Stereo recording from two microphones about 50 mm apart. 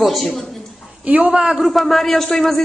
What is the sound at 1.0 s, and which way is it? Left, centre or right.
Speech, right.